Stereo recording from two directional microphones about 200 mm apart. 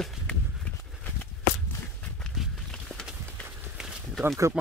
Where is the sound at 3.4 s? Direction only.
10° right (ahead or behind).